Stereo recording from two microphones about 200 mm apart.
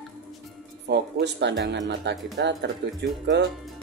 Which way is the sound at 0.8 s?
60° right (ahead or behind).